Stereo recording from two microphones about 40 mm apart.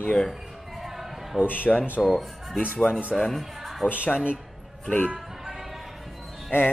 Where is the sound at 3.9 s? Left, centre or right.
Left.